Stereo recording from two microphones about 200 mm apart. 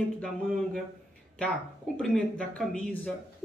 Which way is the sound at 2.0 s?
5° left (ahead or behind).